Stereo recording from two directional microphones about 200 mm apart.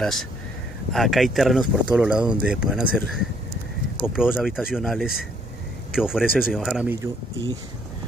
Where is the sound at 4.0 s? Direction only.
25° right (ahead or behind).